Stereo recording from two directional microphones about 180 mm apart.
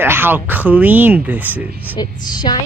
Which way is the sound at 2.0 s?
25° left (ahead or behind).